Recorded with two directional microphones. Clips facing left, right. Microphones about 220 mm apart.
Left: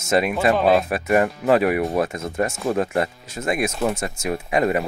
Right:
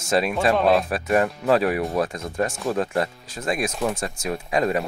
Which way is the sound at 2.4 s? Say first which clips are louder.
Left 2 dB; 25° left (ahead or behind).